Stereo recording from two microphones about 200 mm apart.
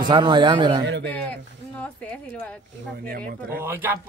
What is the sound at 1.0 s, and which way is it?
Speech, 5° left (ahead or behind).